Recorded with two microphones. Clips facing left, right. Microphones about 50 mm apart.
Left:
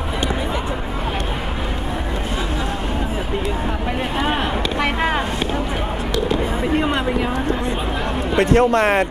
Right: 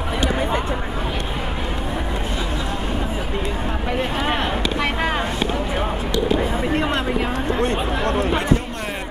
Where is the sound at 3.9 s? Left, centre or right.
Centre.